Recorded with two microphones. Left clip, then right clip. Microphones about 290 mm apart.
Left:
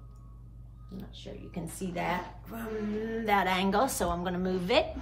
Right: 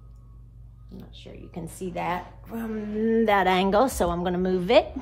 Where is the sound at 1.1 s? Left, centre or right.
Centre.